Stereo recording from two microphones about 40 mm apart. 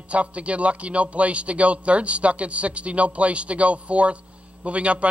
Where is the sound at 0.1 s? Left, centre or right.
Right.